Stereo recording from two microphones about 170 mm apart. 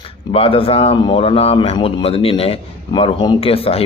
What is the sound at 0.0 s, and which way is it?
Speech, 30° left (ahead or behind).